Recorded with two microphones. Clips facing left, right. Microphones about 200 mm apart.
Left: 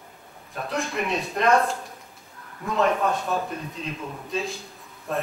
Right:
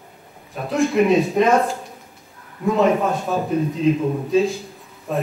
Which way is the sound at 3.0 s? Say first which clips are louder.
Right 4 dB; centre (ahead or behind).